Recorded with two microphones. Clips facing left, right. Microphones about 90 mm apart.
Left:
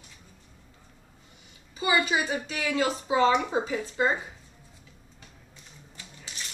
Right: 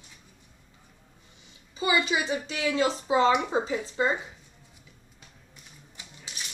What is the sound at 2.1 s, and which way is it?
Speech, 35° left (ahead or behind).